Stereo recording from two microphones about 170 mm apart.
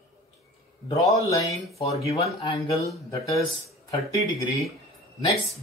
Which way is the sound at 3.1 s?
20° left (ahead or behind).